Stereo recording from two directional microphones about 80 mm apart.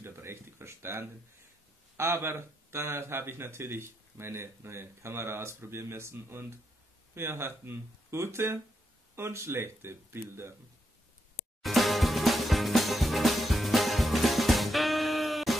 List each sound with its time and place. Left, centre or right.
0.0 s a sound: right
2.0 s speech: right
11.6 s music: centre